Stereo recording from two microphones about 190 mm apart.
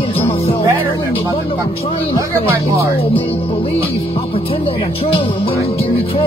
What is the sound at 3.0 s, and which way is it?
Speech, 30° left (ahead or behind).